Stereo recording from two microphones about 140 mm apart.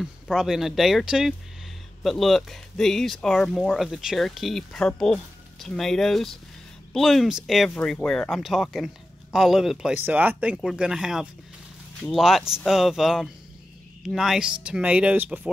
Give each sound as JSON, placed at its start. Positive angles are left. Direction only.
{"t": 0.0, "sound": "speech", "side_deg": -5}